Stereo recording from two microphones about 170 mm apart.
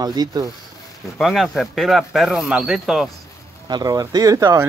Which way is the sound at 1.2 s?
Centre (ahead or behind).